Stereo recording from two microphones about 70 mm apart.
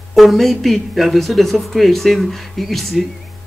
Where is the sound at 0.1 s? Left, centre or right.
Centre.